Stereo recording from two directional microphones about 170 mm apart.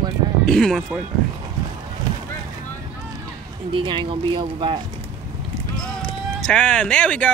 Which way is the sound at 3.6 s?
30° right (ahead or behind).